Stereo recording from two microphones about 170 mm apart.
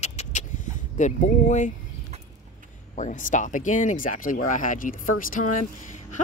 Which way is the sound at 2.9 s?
50° left (ahead or behind).